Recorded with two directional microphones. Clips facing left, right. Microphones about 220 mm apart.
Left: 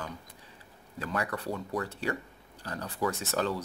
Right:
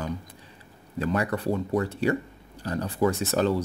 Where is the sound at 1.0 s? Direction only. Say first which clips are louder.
Right 7 dB; 25° right (ahead or behind).